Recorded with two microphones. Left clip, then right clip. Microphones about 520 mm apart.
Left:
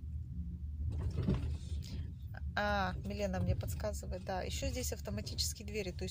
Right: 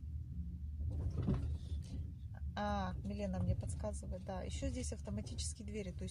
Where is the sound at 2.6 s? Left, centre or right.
Right.